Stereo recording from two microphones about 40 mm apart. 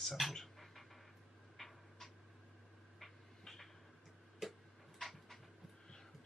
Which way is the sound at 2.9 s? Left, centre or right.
Centre.